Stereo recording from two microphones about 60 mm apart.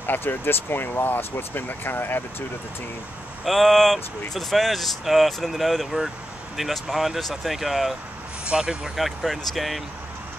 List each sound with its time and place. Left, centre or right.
0.0 s speech: left
3.4 s speech: centre